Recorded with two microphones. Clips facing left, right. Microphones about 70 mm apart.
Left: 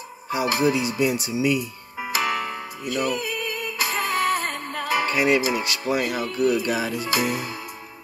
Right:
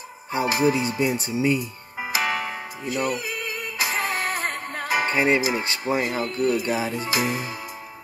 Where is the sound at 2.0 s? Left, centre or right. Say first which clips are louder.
Left 1 dB; centre.